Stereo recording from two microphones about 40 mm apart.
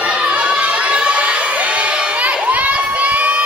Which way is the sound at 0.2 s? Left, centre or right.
Right.